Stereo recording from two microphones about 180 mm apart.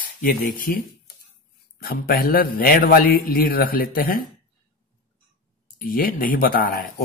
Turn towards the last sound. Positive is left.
turn(degrees=55)  # may be behind; listen again after turning